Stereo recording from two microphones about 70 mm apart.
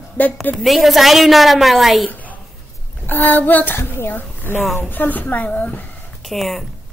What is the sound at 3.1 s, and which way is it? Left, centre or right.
A child's voice, left.